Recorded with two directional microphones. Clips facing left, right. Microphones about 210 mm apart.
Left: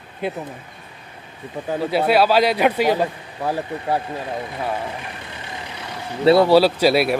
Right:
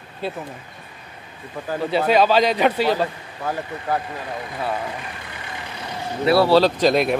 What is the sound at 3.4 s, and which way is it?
Speech, 30° left (ahead or behind).